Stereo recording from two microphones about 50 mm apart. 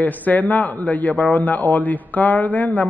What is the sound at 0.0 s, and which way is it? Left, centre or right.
A man's voice, left.